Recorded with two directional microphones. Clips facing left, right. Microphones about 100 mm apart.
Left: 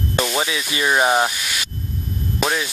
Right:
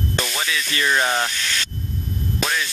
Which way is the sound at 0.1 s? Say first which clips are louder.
Left 7 dB; 15° left (ahead or behind).